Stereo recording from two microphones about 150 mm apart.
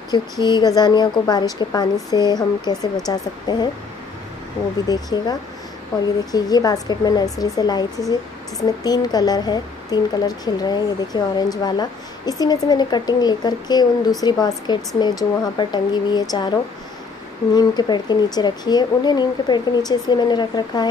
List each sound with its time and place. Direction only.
0.1 s speech: 30° left (ahead or behind)
4.8 s speech: 25° left (ahead or behind)
6.3 s speech: 25° left (ahead or behind)
17.6 s speech: 30° left (ahead or behind)